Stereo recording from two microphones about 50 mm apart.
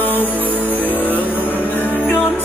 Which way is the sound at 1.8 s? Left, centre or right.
Left.